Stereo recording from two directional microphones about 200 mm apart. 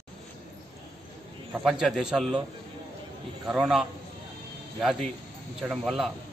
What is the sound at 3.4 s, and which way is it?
Speech, 5° right (ahead or behind).